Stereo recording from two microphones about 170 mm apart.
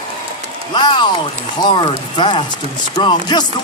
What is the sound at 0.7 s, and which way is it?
Speech, 25° left (ahead or behind).